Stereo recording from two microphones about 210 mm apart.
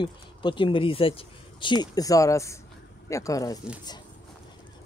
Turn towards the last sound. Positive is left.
turn(degrees=15)  # may be behind; listen again after turning